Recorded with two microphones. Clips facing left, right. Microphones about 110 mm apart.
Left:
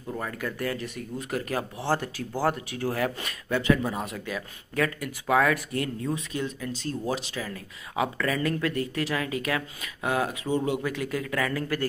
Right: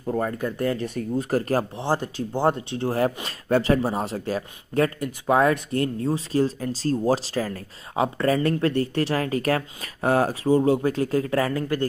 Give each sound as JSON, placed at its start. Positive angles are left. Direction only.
{"t": 0.1, "sound": "speech", "side_deg": -35}
{"t": 1.8, "sound": "speech", "side_deg": -20}